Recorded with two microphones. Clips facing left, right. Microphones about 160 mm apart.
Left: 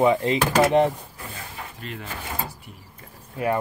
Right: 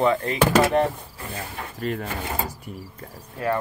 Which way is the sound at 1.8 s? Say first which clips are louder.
Right 9 dB; 45° right (ahead or behind).